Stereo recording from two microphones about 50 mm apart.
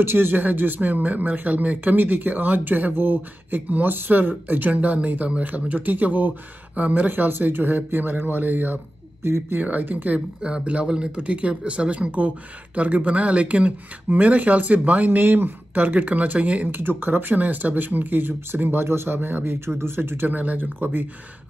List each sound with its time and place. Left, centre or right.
0.0 s speech: right
9.2 s speech: right
9.6 s speech: right
10.4 s speech: right
12.7 s speech: right
15.0 s speech: right
16.6 s speech: right